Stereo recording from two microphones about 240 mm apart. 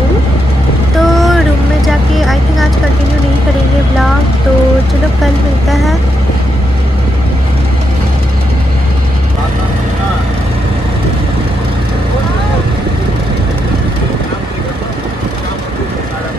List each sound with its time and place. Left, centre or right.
0.9 s vehicle: centre
5.7 s vehicle: centre